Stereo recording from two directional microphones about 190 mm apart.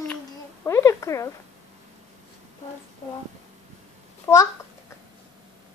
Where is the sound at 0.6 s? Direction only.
15° left (ahead or behind).